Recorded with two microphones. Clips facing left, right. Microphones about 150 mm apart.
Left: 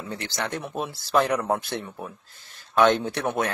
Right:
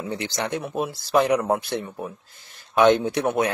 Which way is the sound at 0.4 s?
15° right (ahead or behind).